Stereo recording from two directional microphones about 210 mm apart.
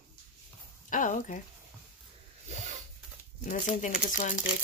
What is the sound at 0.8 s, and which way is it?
Speech, 40° left (ahead or behind).